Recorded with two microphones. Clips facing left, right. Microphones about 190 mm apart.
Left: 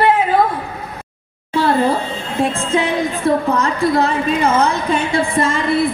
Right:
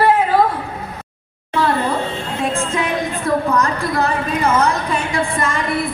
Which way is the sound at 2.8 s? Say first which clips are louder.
Left 3 dB; 25° left (ahead or behind).